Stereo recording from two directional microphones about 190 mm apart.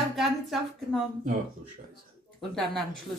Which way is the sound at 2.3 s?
Centre (ahead or behind).